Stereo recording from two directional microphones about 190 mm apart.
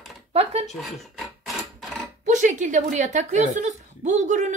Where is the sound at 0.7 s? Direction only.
Centre (ahead or behind).